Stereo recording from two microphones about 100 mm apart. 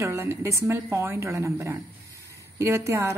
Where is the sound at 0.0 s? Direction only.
30° right (ahead or behind).